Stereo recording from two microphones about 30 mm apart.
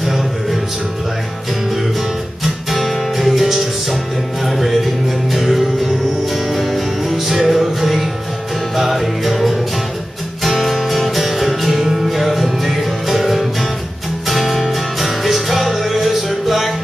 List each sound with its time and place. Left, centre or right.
0.0 s music: centre
2.4 s music: centre